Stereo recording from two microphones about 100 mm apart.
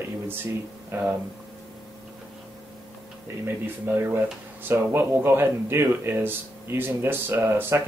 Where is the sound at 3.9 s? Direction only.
20° right (ahead or behind).